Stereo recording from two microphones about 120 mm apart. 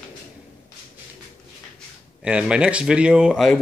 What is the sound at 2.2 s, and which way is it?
Speech, 10° right (ahead or behind).